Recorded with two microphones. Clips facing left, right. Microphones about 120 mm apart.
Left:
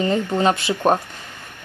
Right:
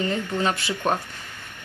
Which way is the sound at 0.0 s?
25° left (ahead or behind).